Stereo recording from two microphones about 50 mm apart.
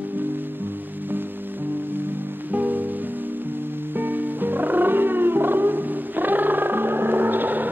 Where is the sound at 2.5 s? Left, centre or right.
Right.